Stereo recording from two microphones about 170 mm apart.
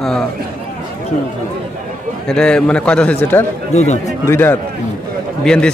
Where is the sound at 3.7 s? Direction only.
45° left (ahead or behind).